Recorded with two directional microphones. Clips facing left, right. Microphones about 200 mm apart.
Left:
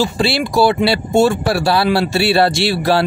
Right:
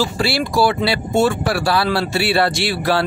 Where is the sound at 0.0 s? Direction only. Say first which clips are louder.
Left 3 dB; 20° left (ahead or behind).